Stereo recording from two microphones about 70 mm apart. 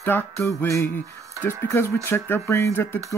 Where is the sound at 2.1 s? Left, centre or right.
Left.